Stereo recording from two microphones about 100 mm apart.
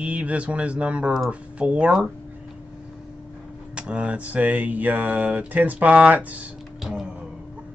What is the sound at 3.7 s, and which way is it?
Speech, 10° right (ahead or behind).